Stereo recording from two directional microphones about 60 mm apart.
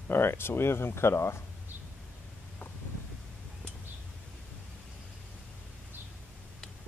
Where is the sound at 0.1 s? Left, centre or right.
Left.